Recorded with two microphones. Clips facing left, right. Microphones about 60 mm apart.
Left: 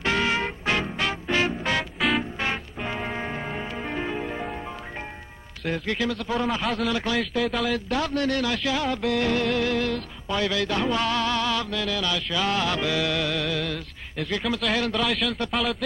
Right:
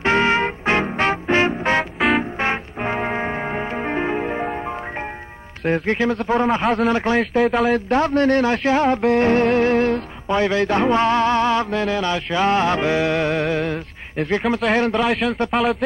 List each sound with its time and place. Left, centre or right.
0.0 s music: right
2.0 s music: right
2.4 s music: right
5.7 s speech: right
7.7 s speech: right
15.0 s speech: right
15.5 s speech: right